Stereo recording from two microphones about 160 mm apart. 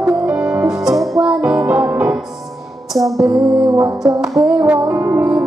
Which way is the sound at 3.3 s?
20° right (ahead or behind).